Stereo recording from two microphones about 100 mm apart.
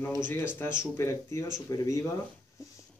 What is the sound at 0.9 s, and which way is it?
Speech, 30° left (ahead or behind).